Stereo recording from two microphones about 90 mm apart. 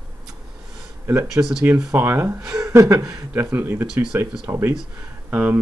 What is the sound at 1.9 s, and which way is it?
Speech, 25° right (ahead or behind).